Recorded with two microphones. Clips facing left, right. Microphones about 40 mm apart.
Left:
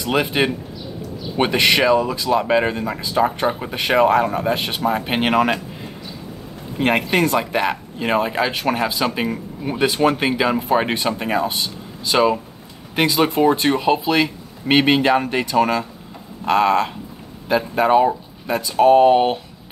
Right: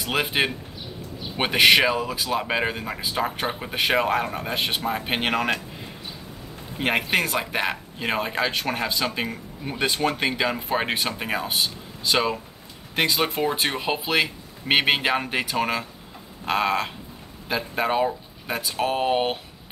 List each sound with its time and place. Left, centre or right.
0.0 s speech: centre
3.0 s speech: centre
3.3 s speech: centre
4.8 s speech: centre
6.8 s speech: centre